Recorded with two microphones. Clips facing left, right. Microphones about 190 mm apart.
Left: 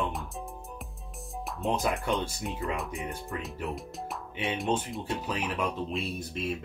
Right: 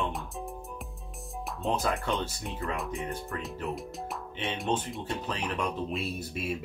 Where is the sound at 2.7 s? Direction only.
Centre (ahead or behind).